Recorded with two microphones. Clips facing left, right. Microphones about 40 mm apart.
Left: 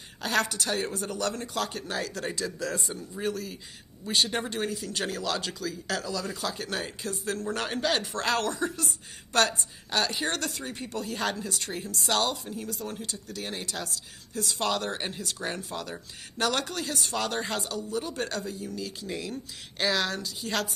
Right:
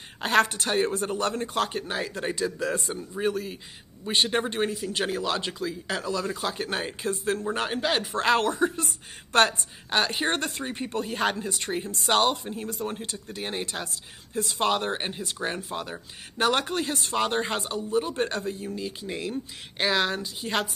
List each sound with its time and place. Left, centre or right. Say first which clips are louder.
0.2 s speech: right 5 dB; right